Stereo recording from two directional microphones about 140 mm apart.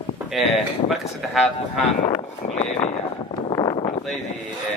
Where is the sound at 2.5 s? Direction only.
45° left (ahead or behind).